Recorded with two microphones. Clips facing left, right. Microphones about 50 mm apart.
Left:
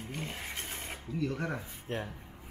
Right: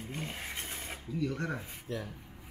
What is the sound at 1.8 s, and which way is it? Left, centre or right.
Speech, left.